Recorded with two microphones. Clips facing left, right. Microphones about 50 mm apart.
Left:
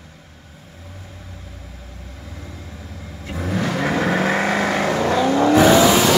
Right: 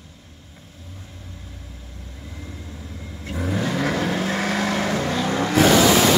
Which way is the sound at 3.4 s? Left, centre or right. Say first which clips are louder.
Left 2 dB; left.